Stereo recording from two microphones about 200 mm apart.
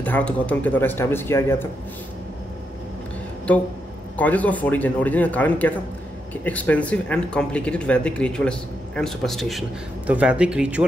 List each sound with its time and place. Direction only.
0.0 s speech: 10° left (ahead or behind)
4.2 s speech: 10° left (ahead or behind)